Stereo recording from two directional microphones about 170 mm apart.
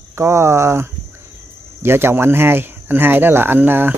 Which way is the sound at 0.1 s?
15° right (ahead or behind).